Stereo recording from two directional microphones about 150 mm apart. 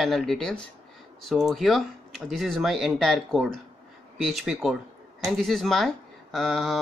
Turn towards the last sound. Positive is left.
turn(degrees=0)  # may be behind; listen again after turning